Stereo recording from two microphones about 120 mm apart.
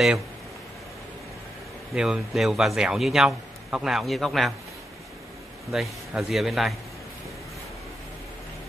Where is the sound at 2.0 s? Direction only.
5° right (ahead or behind).